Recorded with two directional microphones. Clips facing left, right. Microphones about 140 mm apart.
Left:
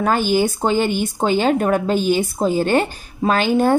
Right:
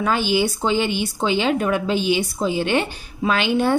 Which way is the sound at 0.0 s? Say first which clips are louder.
Left 3 dB; 45° left (ahead or behind).